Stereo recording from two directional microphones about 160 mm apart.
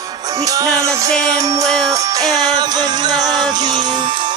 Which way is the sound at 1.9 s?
20° right (ahead or behind).